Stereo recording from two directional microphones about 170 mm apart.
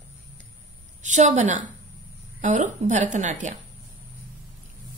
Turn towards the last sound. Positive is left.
turn(degrees=-45)  # may be behind; listen again after turning